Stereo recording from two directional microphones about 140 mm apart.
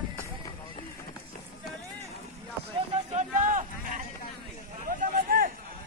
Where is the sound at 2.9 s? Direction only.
60° right (ahead or behind); by 5.5 s 80° right.